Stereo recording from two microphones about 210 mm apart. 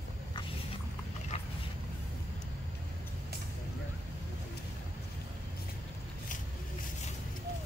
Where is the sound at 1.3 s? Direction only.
30° left (ahead or behind).